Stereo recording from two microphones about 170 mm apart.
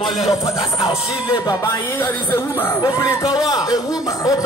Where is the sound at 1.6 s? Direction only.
15° left (ahead or behind).